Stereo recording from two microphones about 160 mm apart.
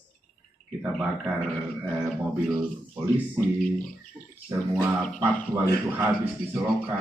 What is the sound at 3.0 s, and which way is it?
Speech, 10° right (ahead or behind).